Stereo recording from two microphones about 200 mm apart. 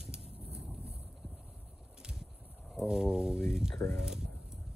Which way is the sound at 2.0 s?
5° right (ahead or behind).